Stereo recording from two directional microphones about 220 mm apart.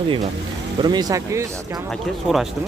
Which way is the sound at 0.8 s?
20° right (ahead or behind).